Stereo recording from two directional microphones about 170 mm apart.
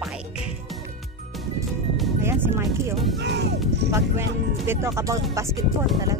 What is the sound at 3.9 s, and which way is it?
Speech, 15° right (ahead or behind).